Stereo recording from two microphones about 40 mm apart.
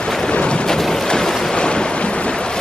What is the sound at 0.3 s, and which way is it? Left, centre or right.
Boat, left.